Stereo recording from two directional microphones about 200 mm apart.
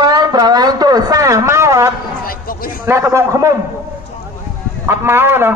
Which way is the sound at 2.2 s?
45° left (ahead or behind).